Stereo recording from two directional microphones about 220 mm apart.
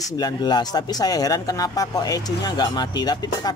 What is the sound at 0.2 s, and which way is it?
Speech, 20° left (ahead or behind).